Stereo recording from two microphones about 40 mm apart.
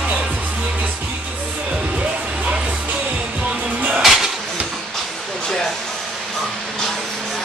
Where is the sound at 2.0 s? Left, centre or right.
Right.